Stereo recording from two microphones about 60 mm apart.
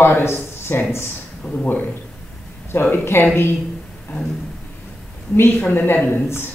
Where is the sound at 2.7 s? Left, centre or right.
Left.